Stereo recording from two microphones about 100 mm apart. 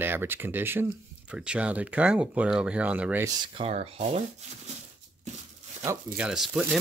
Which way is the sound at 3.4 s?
65° right (ahead or behind).